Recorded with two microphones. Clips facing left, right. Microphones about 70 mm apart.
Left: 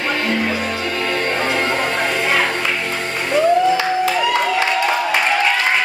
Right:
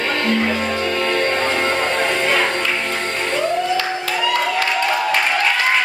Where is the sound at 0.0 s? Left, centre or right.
Centre.